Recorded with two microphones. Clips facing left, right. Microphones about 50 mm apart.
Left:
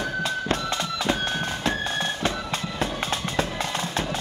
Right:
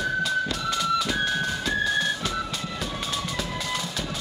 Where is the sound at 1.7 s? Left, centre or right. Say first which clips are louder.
Right 2 dB; left.